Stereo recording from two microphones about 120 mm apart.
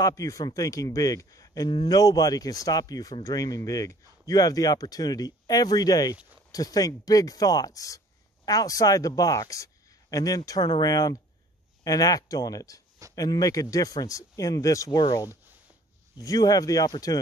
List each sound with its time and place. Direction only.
0.0 s a man's voice: 30° left (ahead or behind)